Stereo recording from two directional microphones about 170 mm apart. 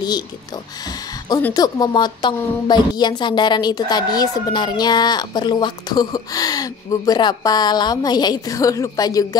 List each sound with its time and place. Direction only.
1.5 s a woman's voice: 20° left (ahead or behind)